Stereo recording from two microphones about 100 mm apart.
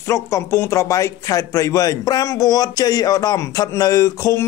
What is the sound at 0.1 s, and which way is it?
Speech, 30° left (ahead or behind).